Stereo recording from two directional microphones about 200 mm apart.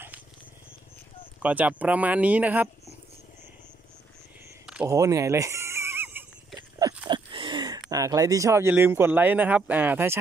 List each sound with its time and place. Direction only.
1.4 s speech: 10° right (ahead or behind)
4.6 s neigh: 10° right (ahead or behind)
7.1 s a sound: 25° right (ahead or behind)
7.9 s speech: 15° right (ahead or behind)